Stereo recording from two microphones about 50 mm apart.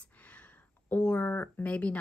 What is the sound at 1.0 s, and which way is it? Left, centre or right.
Speech, left.